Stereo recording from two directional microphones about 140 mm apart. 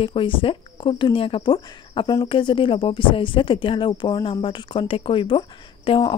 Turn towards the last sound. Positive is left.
turn(degrees=35)  # may be behind; listen again after turning